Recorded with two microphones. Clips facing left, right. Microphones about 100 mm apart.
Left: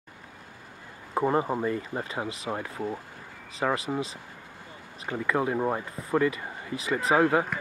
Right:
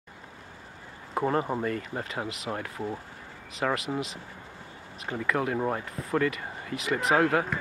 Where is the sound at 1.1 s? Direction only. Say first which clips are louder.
Left 2 dB; 15° left (ahead or behind).